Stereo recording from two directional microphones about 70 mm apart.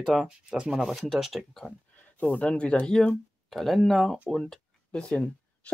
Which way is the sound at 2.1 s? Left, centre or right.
Left.